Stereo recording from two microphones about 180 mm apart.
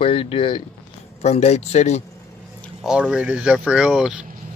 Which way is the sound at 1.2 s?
40° left (ahead or behind).